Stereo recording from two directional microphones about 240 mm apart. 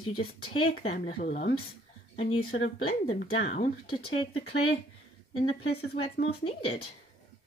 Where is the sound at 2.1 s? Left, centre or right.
Left.